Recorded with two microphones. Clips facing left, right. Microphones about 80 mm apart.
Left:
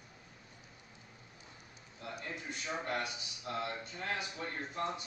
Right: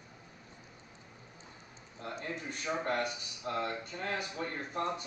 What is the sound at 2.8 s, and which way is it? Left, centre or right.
A man's voice, right.